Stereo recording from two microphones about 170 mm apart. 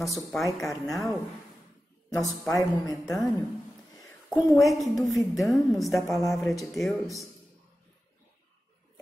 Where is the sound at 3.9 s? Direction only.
20° left (ahead or behind).